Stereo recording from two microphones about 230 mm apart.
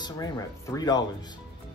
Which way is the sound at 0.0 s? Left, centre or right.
Centre.